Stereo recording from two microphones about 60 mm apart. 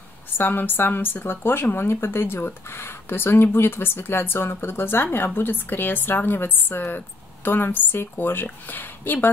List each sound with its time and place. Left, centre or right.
0.4 s speech: left